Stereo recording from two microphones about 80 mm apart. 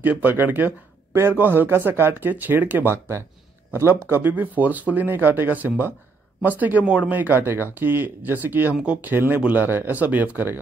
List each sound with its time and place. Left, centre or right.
0.0 s speech: right